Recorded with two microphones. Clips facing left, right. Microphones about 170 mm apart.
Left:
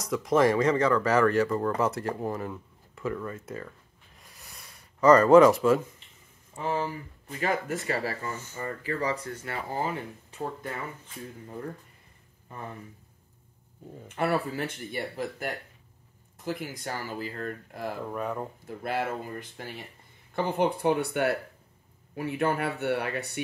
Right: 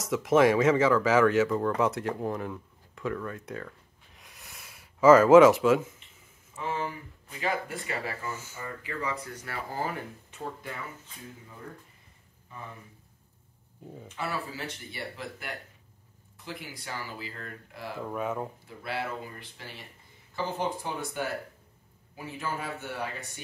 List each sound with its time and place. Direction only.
0.0 s speech: centre (ahead or behind)
4.2 s a sound: centre (ahead or behind)
6.5 s speech: 35° left (ahead or behind)
7.3 s speech: 45° left (ahead or behind); by 9.9 s 20° left (ahead or behind)
14.0 s speech: 55° left (ahead or behind)
17.9 s speech: centre (ahead or behind)
18.8 s speech: 45° left (ahead or behind)
20.3 s speech: 60° left (ahead or behind)